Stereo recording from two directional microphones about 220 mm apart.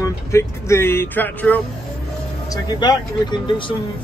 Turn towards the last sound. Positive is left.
turn(degrees=20)  # may be behind; listen again after turning